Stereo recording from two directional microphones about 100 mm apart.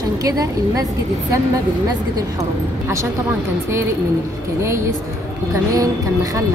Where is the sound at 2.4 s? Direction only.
30° right (ahead or behind).